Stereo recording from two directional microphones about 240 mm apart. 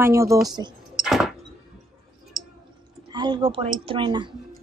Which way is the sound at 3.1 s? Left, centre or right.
Centre.